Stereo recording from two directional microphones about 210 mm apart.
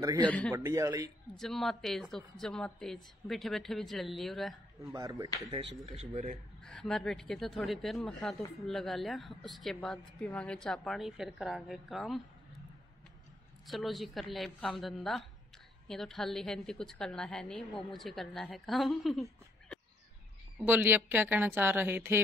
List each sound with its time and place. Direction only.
0.0 s a woman's voice: 15° right (ahead or behind)
0.3 s a woman's voice: 5° left (ahead or behind)
0.6 s a woman's voice: 15° right (ahead or behind)
1.3 s a woman's voice: centre (ahead or behind)
4.9 s a woman's voice: 15° right (ahead or behind)
6.6 s a woman's voice: 5° left (ahead or behind)
13.7 s a woman's voice: centre (ahead or behind)
20.5 s a woman's voice: 10° right (ahead or behind)